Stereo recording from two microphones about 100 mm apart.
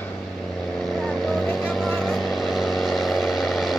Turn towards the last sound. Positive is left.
turn(degrees=0)  # may be behind; listen again after turning